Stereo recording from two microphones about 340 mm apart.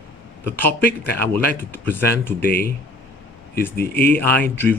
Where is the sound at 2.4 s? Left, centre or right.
Left.